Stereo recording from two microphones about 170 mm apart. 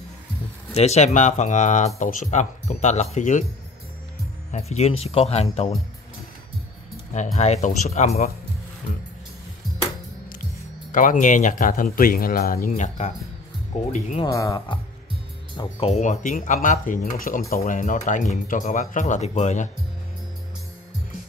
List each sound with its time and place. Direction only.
0.7 s speech: 40° left (ahead or behind)
4.5 s speech: 40° left (ahead or behind)
7.3 s speech: 40° left (ahead or behind)
10.9 s speech: 50° left (ahead or behind)
14.2 s speech: 20° left (ahead or behind)
15.5 s speech: 35° left (ahead or behind)